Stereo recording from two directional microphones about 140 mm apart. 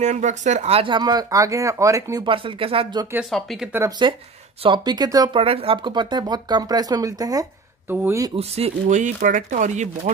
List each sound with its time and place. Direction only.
0.0 s speech: 60° right (ahead or behind); by 2.2 s 25° right (ahead or behind)
2.2 s speech: 40° right (ahead or behind)
3.3 s speech: centre (ahead or behind)
4.6 s speech: 30° right (ahead or behind)
5.4 s speech: 45° right (ahead or behind); by 7.4 s 25° right (ahead or behind)
7.9 s speech: 15° right (ahead or behind)
8.4 s speech: 45° right (ahead or behind); by 10.1 s 65° right (ahead or behind)